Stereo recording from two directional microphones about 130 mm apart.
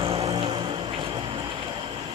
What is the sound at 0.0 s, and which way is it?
Music, 50° right (ahead or behind).